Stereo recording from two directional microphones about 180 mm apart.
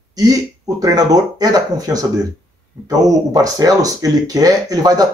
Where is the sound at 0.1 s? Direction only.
20° right (ahead or behind).